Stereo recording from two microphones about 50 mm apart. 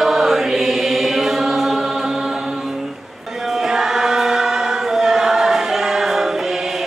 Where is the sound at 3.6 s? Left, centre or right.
Centre.